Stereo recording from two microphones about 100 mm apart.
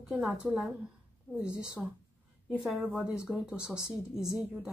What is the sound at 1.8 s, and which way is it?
Speech, 10° right (ahead or behind).